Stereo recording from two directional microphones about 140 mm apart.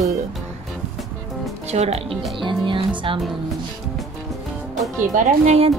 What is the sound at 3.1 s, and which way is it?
Speech, 40° right (ahead or behind).